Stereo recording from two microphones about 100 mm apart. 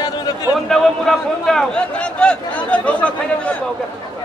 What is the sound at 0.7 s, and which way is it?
A man's voice, 5° left (ahead or behind).